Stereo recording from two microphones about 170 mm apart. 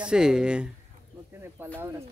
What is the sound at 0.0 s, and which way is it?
Speech, 5° right (ahead or behind).